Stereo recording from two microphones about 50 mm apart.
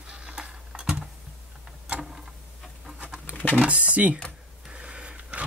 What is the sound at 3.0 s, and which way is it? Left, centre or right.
Pigeon, right.